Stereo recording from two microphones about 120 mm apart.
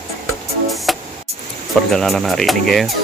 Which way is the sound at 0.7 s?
Centre (ahead or behind).